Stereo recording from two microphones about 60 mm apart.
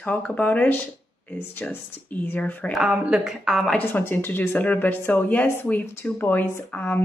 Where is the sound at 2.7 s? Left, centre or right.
Centre.